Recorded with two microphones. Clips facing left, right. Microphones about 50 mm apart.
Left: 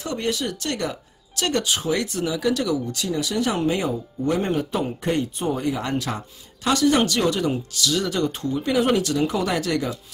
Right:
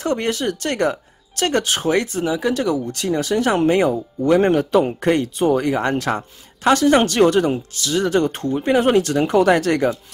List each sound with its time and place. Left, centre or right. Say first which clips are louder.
0.0 s speech: right 5 dB; right
2.0 s speech: right 3 dB; right
7.7 s speech: right 5 dB; right